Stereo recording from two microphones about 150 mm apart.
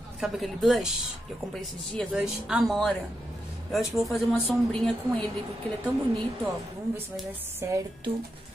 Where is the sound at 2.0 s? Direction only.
5° right (ahead or behind).